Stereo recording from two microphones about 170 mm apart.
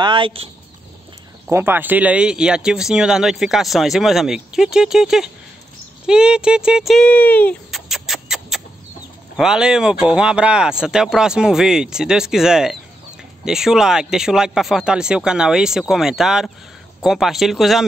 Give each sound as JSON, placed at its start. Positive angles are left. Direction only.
{"t": 0.0, "sound": "speech", "side_deg": -30}
{"t": 1.5, "sound": "speech", "side_deg": -15}
{"t": 7.7, "sound": "a sound", "side_deg": 0}
{"t": 9.4, "sound": "speech", "side_deg": -5}